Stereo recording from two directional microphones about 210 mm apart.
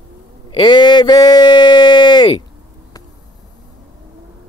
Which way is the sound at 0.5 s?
20° left (ahead or behind).